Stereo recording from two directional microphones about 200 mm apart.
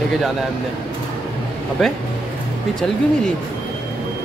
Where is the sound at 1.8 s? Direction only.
Centre (ahead or behind).